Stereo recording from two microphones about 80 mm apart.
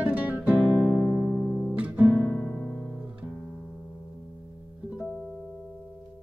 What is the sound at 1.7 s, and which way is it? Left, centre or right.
Guitar, centre.